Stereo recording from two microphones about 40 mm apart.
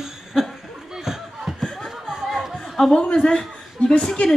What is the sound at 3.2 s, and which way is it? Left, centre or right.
Chuckle, centre.